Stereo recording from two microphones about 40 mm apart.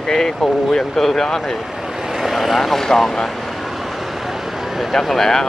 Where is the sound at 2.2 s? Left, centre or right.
Centre.